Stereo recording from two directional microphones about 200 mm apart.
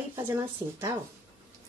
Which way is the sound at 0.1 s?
15° right (ahead or behind).